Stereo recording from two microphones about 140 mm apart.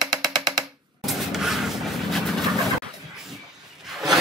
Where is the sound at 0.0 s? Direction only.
30° right (ahead or behind).